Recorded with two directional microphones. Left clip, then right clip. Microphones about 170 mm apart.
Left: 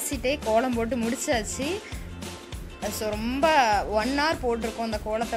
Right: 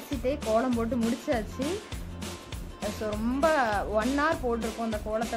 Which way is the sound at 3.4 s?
15° left (ahead or behind).